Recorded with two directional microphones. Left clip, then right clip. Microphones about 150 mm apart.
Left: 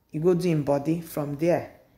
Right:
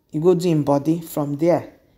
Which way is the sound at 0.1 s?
25° right (ahead or behind).